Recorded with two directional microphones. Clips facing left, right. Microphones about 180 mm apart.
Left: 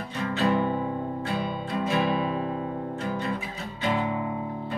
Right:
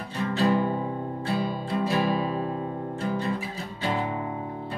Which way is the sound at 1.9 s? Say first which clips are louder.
Left 1 dB; 35° right (ahead or behind).